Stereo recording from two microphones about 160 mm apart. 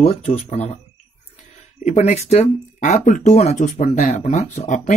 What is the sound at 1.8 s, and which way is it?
Speech, 45° left (ahead or behind).